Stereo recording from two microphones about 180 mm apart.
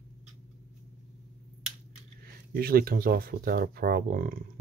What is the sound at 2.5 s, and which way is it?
Speech, 55° right (ahead or behind).